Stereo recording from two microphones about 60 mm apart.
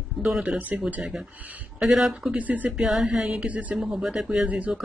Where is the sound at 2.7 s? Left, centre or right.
Centre.